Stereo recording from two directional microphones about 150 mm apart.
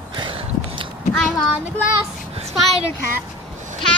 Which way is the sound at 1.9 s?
40° right (ahead or behind).